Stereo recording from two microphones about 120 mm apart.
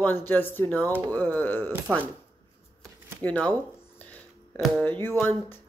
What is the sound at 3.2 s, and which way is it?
Speech, 10° left (ahead or behind).